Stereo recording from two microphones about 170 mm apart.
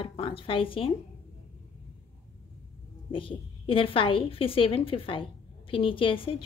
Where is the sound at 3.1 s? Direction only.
30° left (ahead or behind).